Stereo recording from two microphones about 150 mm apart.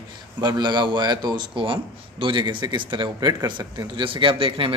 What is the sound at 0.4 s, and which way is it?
Speech, 30° right (ahead or behind).